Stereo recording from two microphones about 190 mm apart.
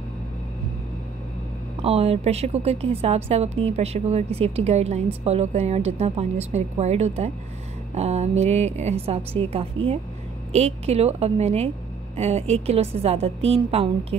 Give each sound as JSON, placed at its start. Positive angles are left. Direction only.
{"t": 1.8, "sound": "a woman's voice", "side_deg": -30}